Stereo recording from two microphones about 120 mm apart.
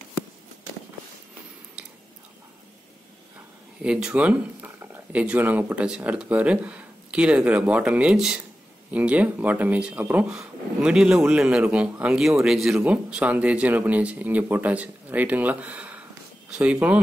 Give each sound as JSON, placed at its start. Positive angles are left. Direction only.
{"t": 3.8, "sound": "speech", "side_deg": -10}